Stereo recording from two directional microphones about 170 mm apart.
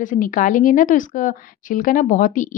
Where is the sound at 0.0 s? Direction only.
50° left (ahead or behind).